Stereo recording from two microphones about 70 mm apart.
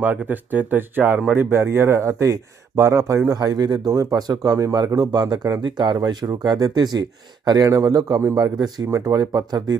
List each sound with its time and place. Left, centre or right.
0.0 s speech: right
3.3 s speech: right
3.9 s speech: right